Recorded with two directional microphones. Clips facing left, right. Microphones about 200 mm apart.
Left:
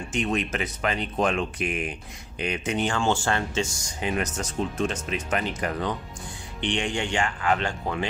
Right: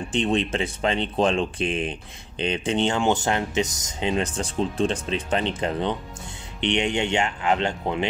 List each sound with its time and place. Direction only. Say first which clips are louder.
0.1 s speech: right 4 dB; 30° right (ahead or behind)